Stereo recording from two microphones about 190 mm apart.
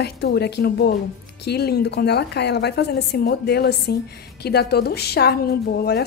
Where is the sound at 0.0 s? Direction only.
60° left (ahead or behind).